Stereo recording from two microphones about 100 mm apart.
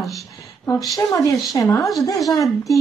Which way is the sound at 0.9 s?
35° left (ahead or behind).